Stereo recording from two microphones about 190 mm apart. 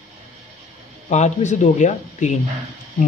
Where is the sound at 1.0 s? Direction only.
40° left (ahead or behind).